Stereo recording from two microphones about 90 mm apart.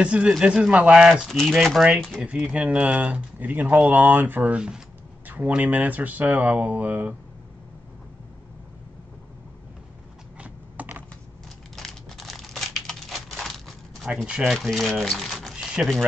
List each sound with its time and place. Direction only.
0.0 s speech: 15° right (ahead or behind)
2.2 s speech: 10° right (ahead or behind)
5.2 s a sound: 20° right (ahead or behind)
5.5 s speech: 15° right (ahead or behind)
10.4 s computer keyboard: 15° right (ahead or behind)
11.7 s crumpling: 5° left (ahead or behind)